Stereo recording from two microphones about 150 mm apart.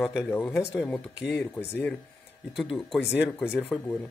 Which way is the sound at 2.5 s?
Centre (ahead or behind).